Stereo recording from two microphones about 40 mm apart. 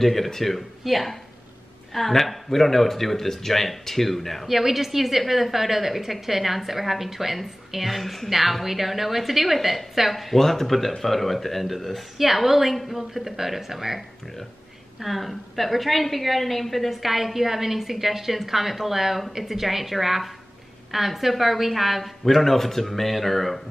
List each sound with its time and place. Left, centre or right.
0.0 s a woman's voice: centre
4.5 s a woman's voice: centre